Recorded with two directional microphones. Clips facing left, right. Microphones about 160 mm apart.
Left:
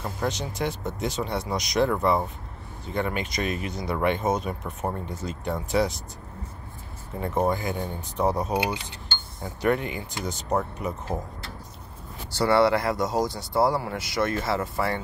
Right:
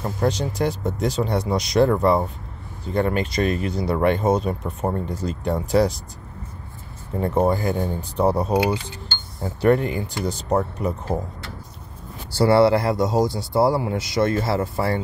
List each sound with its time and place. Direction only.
0.2 s speech: 35° right (ahead or behind)
7.2 s speech: 35° right (ahead or behind)
9.6 s speech: 35° right (ahead or behind)
12.4 s speech: 30° right (ahead or behind)